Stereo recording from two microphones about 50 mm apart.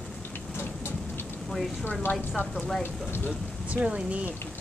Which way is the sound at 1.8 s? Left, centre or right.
Left.